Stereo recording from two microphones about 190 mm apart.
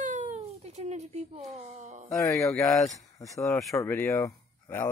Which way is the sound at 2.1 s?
15° left (ahead or behind).